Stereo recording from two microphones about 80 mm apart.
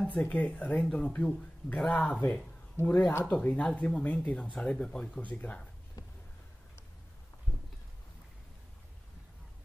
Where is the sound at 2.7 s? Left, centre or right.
Left.